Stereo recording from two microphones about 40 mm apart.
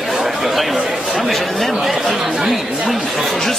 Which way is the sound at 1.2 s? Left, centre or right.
Centre.